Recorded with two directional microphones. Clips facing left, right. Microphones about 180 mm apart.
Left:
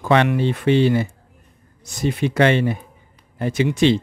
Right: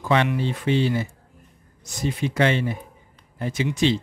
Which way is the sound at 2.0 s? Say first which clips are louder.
Left 5 dB; 65° left (ahead or behind).